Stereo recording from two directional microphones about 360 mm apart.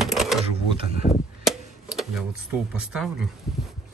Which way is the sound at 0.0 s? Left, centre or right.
Centre.